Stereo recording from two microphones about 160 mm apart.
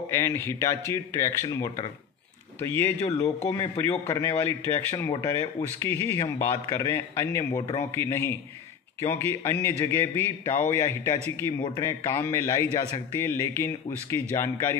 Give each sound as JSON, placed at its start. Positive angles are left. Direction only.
{"t": 0.1, "sound": "a man's voice", "side_deg": 15}